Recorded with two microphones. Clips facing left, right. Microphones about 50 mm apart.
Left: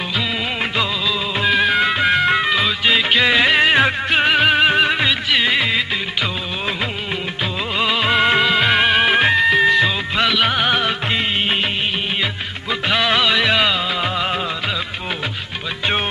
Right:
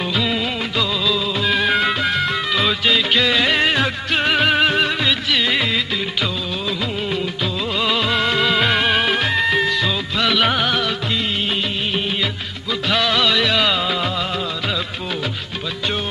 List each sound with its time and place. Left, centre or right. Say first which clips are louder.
1.5 s music: left 2 dB; centre
2.0 s music: left 4 dB; left
2.9 s music of bollywood: left 3 dB; left
3.7 s music: left 4 dB; left
4.3 s music: left 1 dB; centre
8.0 s music of bollywood: left 3 dB; left
8.5 s music: left 2 dB; centre
9.7 s music: left 4 dB; left
10.2 s music: right 1 dB; centre
10.6 s music: left 2 dB; centre
12.9 s music of bollywood: left 1 dB; centre